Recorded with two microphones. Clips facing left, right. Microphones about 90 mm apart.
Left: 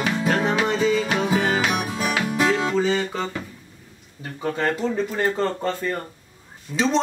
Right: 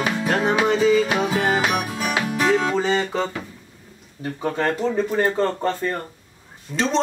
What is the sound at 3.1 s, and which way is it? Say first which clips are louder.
Speech: right 3 dB; 10° right (ahead or behind).